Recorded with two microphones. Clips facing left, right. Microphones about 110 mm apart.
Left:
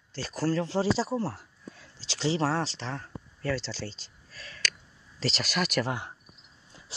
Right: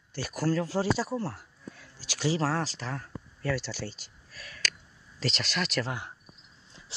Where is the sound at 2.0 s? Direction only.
25° left (ahead or behind).